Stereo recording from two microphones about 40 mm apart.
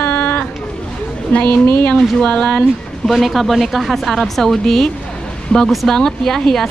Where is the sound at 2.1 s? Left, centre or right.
Left.